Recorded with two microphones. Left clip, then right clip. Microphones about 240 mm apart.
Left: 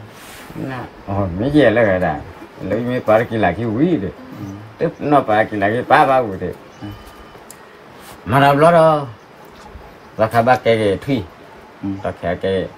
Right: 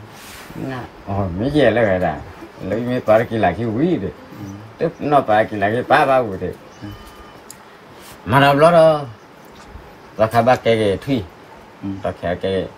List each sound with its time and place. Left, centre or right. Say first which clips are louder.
0.7 s speech: left 1 dB; centre
8.3 s speech: left 1 dB; centre
10.1 s speech: left 1 dB; centre